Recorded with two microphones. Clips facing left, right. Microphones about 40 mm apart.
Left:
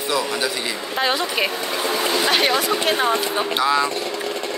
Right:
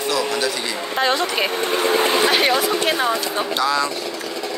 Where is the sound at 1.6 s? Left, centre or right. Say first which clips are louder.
Right 4 dB; right.